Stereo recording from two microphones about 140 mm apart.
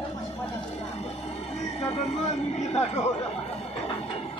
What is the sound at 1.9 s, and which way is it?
Speech, 50° left (ahead or behind).